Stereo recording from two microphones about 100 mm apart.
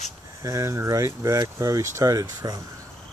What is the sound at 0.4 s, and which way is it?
Speech, 35° right (ahead or behind).